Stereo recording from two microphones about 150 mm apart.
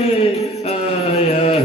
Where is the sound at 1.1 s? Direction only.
40° left (ahead or behind).